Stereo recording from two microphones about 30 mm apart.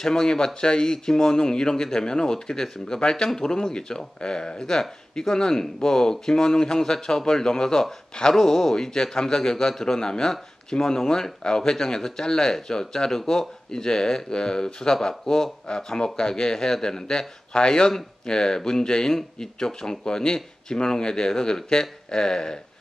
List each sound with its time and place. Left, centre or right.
0.0 s speech: left